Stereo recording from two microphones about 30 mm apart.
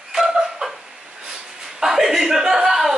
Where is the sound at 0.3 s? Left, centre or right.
Centre.